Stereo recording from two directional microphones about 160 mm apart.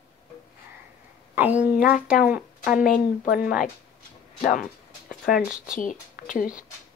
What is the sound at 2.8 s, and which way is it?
Speech, 60° left (ahead or behind).